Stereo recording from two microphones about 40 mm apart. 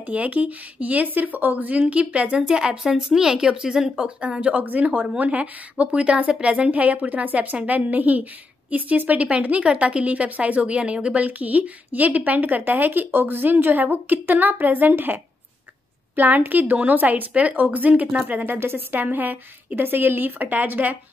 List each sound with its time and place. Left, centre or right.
0.0 s speech: right
2.4 s speech: right
2.8 s a woman's voice: centre
3.1 s a woman's voice: centre; by 15.1 s right
16.2 s a woman's voice: right
17.3 s speech: right
18.9 s a woman's voice: right